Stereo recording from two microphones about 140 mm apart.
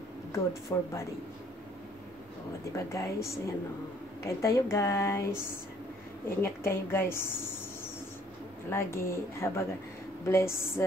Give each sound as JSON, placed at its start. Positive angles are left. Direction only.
{"t": 0.3, "sound": "speech", "side_deg": 20}
{"t": 2.7, "sound": "speech", "side_deg": 20}
{"t": 4.2, "sound": "speech", "side_deg": 20}
{"t": 6.2, "sound": "a woman's voice", "side_deg": 15}
{"t": 8.6, "sound": "speech", "side_deg": 20}